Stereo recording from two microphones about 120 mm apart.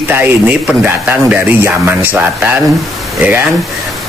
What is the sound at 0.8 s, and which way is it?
Speech, 15° right (ahead or behind).